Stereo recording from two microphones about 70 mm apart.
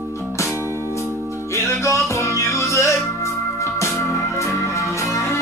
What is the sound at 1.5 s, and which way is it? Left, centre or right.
Music, left.